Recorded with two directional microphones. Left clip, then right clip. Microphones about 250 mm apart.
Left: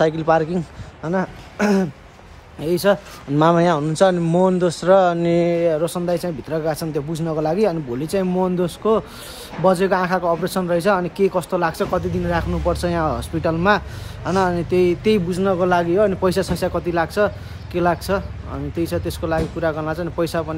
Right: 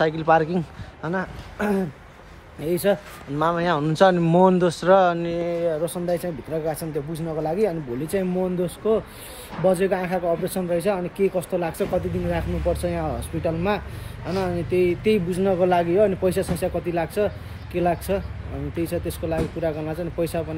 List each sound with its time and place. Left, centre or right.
0.0 s speech: centre
1.1 s a woman's voice: left
2.6 s speech: centre
3.8 s speech: centre
5.4 s speech: left
6.0 s a woman's voice: centre